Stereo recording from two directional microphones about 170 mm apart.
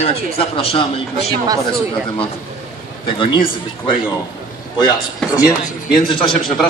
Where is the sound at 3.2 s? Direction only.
30° left (ahead or behind).